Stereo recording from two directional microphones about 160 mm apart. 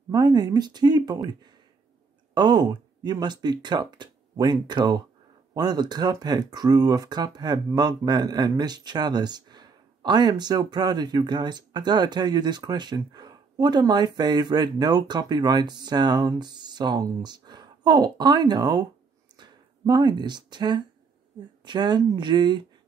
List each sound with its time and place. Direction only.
0.1 s speech: 25° right (ahead or behind)